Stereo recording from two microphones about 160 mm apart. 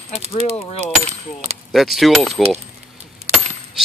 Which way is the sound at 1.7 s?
Centre (ahead or behind).